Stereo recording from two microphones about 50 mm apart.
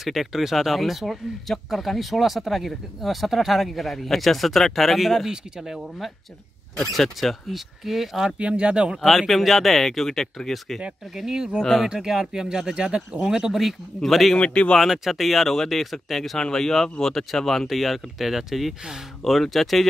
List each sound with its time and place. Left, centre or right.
0.0 s speech: centre
8.4 s speech: right
8.9 s speech: centre
11.1 s speech: centre
11.6 s speech: centre
11.9 s speech: centre
13.6 s speech: centre
14.3 s speech: left
14.8 s speech: centre